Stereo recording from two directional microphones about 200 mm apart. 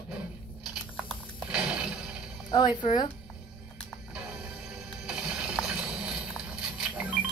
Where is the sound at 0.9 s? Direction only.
Centre (ahead or behind).